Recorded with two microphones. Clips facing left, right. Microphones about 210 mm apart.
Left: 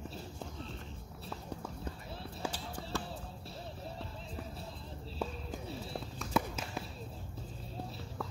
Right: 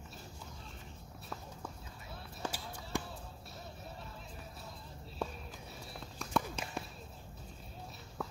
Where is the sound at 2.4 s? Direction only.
10° left (ahead or behind).